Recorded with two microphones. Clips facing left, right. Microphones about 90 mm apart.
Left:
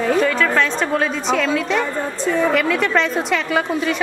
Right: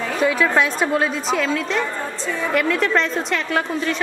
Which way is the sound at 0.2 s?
10° right (ahead or behind).